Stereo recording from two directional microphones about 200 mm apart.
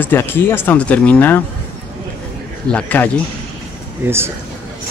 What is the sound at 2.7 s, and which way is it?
Speech, 5° left (ahead or behind).